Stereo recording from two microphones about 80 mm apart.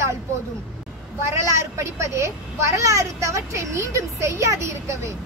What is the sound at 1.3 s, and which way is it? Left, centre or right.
Speech, right.